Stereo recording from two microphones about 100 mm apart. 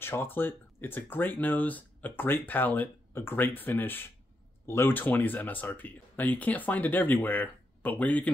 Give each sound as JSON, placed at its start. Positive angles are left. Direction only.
{"t": 0.0, "sound": "speech", "side_deg": 20}